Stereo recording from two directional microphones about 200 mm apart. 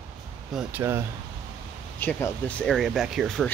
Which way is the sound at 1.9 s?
10° left (ahead or behind).